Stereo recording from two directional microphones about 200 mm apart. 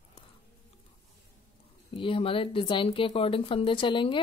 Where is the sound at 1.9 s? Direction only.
25° left (ahead or behind).